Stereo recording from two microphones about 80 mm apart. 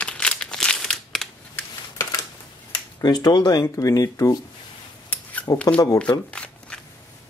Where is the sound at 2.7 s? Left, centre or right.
Left.